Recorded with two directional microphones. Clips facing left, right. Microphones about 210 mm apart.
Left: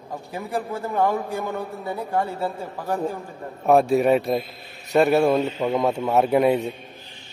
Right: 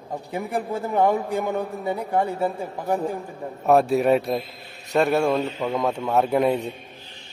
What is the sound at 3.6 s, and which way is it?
A man's voice, centre (ahead or behind).